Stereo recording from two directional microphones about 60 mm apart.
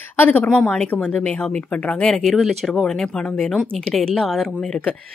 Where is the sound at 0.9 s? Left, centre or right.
Left.